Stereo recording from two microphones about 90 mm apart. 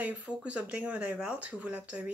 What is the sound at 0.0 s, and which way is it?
Speech, 15° right (ahead or behind).